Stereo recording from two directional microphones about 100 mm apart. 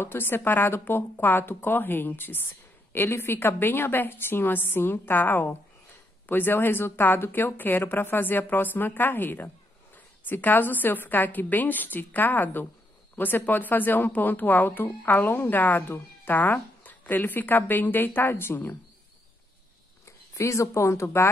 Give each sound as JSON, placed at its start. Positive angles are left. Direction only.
{"t": 0.0, "sound": "speech", "side_deg": 20}
{"t": 20.1, "sound": "speech", "side_deg": 30}